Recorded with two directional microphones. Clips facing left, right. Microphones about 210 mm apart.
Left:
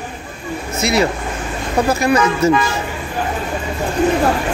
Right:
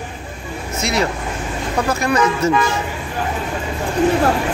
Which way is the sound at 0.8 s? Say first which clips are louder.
Left 3 dB; 5° left (ahead or behind).